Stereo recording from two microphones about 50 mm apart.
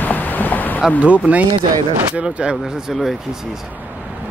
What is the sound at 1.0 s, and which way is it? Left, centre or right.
Speech, right.